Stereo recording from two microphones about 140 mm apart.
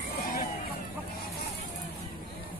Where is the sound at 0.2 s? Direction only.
90° left.